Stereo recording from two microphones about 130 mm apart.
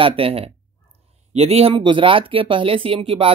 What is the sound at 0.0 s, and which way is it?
Speech, 45° right (ahead or behind).